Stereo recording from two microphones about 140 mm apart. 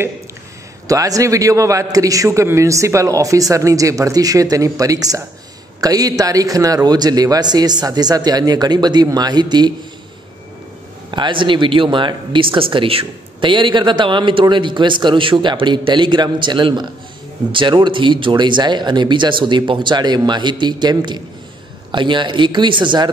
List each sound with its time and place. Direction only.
0.8 s a man's voice: 25° right (ahead or behind)
11.1 s speech: 35° right (ahead or behind)